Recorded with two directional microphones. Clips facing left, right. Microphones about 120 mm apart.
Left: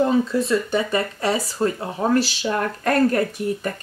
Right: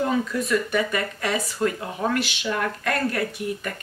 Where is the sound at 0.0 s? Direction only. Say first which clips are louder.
Left 5 dB; 30° left (ahead or behind).